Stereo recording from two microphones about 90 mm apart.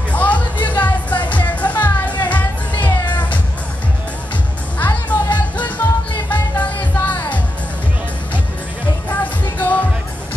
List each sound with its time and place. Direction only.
0.1 s music: 15° left (ahead or behind)
4.7 s music: 20° left (ahead or behind)
9.2 s music: 15° left (ahead or behind)